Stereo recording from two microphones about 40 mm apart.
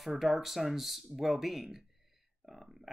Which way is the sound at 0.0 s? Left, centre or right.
Centre.